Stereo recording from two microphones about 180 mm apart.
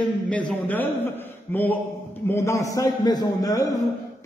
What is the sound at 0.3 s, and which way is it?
A man's voice, 5° left (ahead or behind).